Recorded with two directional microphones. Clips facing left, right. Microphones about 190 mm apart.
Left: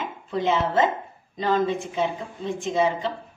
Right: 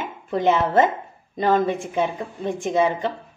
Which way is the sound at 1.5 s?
55° right (ahead or behind).